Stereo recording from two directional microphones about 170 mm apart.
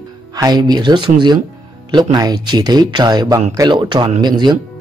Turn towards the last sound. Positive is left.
turn(degrees=-25)  # may be behind; listen again after turning